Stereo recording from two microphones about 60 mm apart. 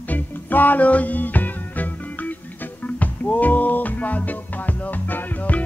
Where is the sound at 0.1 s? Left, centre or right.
Left.